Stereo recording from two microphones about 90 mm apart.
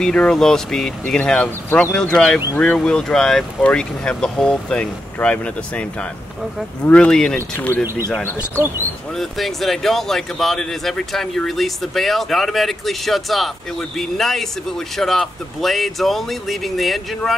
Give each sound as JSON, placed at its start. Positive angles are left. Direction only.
{"t": 0.0, "sound": "speech", "side_deg": 10}
{"t": 2.1, "sound": "speech", "side_deg": 5}
{"t": 7.3, "sound": "speech", "side_deg": 20}
{"t": 9.1, "sound": "speech", "side_deg": 0}